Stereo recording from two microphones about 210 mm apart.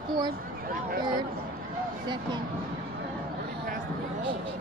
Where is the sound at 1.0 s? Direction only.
20° right (ahead or behind).